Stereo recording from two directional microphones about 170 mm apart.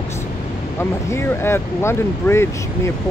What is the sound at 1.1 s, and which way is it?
Speech, 15° left (ahead or behind).